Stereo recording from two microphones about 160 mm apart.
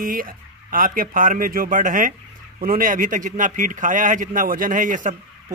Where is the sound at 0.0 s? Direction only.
60° right (ahead or behind).